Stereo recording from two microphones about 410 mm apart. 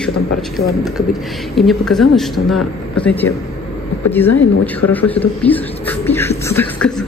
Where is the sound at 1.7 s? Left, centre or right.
Centre.